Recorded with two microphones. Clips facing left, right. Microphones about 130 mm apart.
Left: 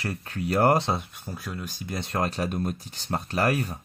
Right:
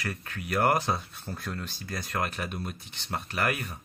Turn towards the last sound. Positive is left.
turn(degrees=35)  # may be behind; listen again after turning